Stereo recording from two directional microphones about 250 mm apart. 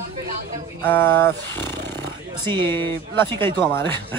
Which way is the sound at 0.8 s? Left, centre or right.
Centre.